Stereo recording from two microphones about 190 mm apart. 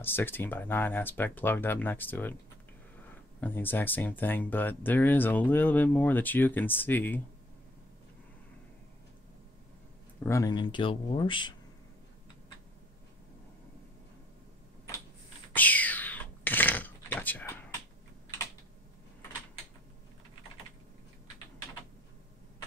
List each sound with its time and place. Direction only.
0.0 s speech: 10° left (ahead or behind)
3.3 s speech: 10° left (ahead or behind)
10.2 s speech: 15° left (ahead or behind)
15.5 s a sound: 10° left (ahead or behind)